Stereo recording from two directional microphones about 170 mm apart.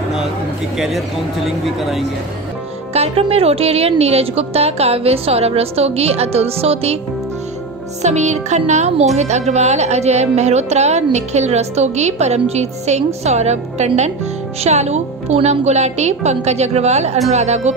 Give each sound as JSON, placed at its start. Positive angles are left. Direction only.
{"t": 0.7, "sound": "speech", "side_deg": 0}
{"t": 2.9, "sound": "speech", "side_deg": -35}
{"t": 8.0, "sound": "speech", "side_deg": -40}